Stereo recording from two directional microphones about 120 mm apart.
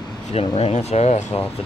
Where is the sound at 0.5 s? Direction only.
60° left (ahead or behind).